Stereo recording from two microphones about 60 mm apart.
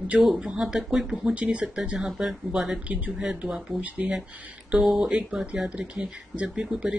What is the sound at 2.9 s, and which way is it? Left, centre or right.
Speech, right.